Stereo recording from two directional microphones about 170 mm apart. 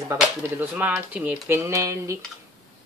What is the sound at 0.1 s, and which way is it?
Speech, 10° right (ahead or behind).